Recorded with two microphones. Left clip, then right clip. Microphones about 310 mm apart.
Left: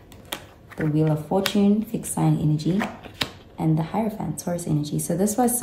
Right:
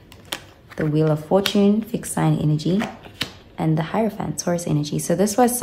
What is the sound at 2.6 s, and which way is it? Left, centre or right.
Speech, centre.